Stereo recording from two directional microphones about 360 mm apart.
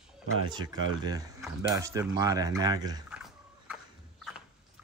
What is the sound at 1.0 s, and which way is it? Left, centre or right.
Speech, centre.